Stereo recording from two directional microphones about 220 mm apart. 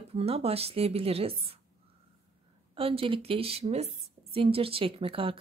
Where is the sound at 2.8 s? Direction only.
25° right (ahead or behind).